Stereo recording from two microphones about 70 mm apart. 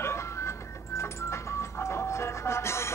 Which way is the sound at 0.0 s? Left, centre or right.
Left.